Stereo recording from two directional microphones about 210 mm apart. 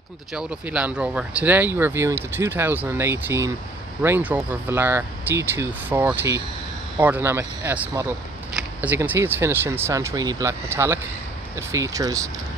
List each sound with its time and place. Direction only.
0.3 s speech: 5° right (ahead or behind)